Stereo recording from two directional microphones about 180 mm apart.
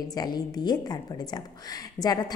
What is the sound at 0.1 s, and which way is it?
A woman's voice, 20° left (ahead or behind).